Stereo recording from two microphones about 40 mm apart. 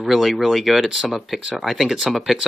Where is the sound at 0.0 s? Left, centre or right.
Centre.